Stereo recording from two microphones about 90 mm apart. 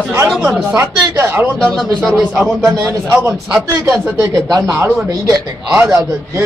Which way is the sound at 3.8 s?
40° right (ahead or behind).